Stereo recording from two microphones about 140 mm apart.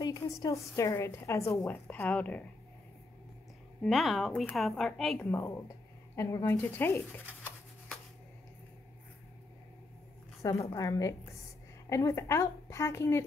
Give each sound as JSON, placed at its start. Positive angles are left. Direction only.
{"t": 0.0, "sound": "a woman's voice", "side_deg": 25}
{"t": 3.8, "sound": "a woman's voice", "side_deg": 0}
{"t": 5.2, "sound": "a woman's voice", "side_deg": 15}
{"t": 10.4, "sound": "a woman's voice", "side_deg": 25}